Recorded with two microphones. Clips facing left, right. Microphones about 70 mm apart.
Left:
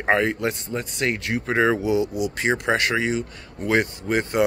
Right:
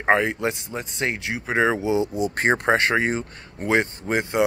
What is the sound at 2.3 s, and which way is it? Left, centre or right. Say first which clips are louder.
Speech: right 2 dB; right.